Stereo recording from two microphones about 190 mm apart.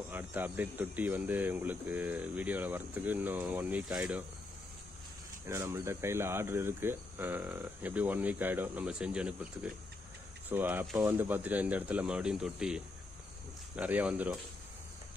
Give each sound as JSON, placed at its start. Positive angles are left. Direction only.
{"t": 0.1, "sound": "speech", "side_deg": -10}
{"t": 5.5, "sound": "speech", "side_deg": -15}